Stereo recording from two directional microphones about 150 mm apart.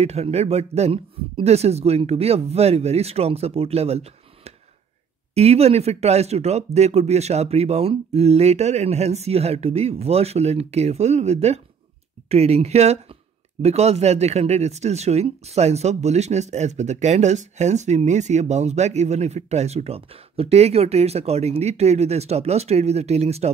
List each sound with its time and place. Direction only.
0.0 s speech: 45° right (ahead or behind)